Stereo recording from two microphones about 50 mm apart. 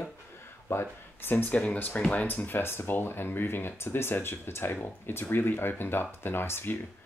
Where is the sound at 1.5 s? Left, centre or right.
Left.